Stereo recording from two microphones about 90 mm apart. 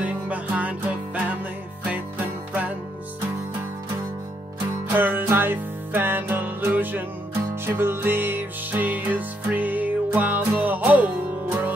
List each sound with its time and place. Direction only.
0.0 s music: 15° right (ahead or behind)
4.9 s music: 20° right (ahead or behind)